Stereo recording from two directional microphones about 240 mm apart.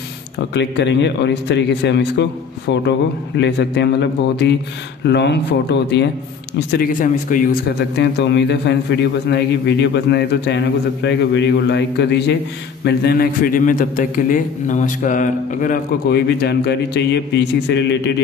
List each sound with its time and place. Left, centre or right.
0.6 s a man's voice: left
3.3 s a man's voice: left